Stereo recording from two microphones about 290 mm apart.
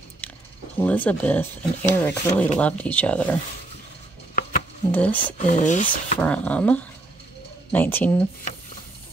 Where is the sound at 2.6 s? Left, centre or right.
Centre.